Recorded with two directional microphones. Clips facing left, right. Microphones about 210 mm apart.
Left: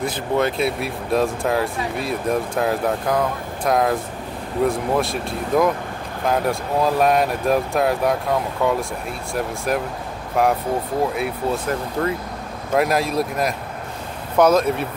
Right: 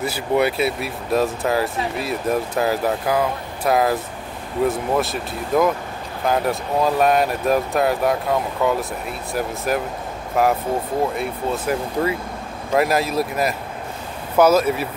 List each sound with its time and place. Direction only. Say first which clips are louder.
0.0 s speech: right 1 dB; 10° right (ahead or behind)
11.6 s speech: right 1 dB; 10° right (ahead or behind)